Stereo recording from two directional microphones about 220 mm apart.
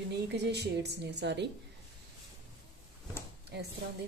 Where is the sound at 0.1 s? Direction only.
50° right (ahead or behind).